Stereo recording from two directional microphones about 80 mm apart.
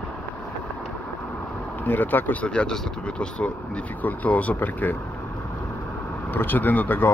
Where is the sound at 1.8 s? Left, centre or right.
Left.